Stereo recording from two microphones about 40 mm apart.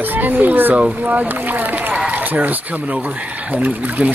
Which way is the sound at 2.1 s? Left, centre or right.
Right.